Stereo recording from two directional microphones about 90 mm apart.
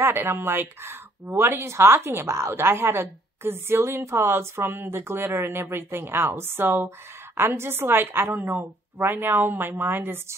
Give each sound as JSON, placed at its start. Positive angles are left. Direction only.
{"t": 0.0, "sound": "a woman's voice", "side_deg": -25}